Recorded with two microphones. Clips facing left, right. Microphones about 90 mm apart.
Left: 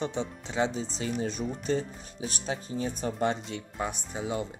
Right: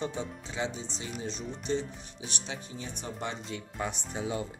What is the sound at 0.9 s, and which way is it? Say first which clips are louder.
Speech: left 6 dB; 45° left (ahead or behind).